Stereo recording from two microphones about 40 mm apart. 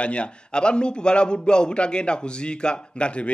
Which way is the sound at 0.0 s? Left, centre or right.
Left.